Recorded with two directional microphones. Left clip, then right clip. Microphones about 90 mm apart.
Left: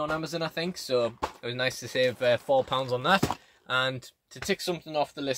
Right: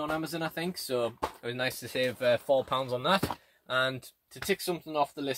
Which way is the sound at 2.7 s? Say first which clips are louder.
Left 3 dB; 55° left (ahead or behind).